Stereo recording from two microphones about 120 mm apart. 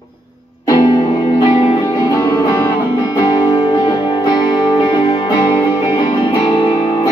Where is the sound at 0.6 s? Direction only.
35° left (ahead or behind).